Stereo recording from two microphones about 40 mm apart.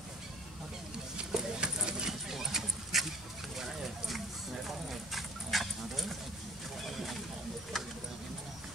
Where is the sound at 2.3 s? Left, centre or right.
Centre.